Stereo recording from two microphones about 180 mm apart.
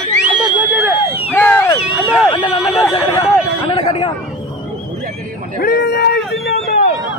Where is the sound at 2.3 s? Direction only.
25° left (ahead or behind).